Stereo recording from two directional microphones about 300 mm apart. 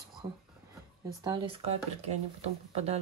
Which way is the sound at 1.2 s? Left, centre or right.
Centre.